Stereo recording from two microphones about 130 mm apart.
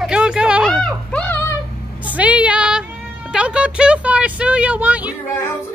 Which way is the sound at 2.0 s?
10° right (ahead or behind).